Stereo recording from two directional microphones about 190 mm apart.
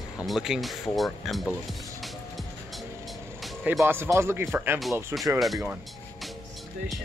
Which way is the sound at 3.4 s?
Centre (ahead or behind).